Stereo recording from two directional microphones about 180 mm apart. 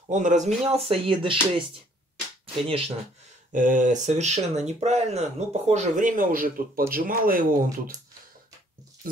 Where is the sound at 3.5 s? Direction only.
45° right (ahead or behind).